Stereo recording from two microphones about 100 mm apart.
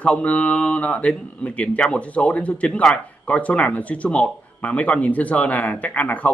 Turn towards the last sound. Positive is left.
turn(degrees=15)  # may be behind; listen again after turning